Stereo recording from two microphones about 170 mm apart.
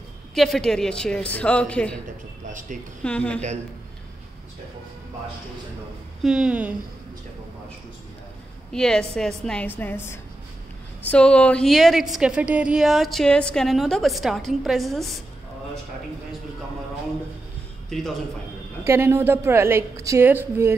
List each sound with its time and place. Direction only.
0.3 s a woman's voice: centre (ahead or behind)
2.4 s speech: 50° right (ahead or behind)
3.0 s a woman's voice: 5° left (ahead or behind)
6.2 s a woman's voice: 5° right (ahead or behind)
8.7 s a woman's voice: 5° left (ahead or behind)
17.8 s a man's voice: centre (ahead or behind)
18.9 s a woman's voice: 15° right (ahead or behind)